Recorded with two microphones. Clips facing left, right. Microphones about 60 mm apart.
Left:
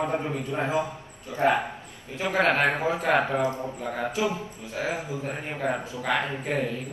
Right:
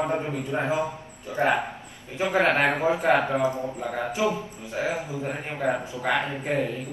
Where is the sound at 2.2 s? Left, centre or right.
Right.